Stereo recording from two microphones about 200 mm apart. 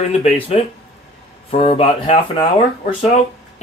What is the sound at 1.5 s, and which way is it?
A man's voice, 30° left (ahead or behind).